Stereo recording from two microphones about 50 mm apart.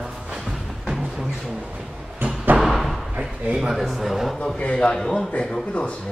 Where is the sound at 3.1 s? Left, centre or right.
Centre.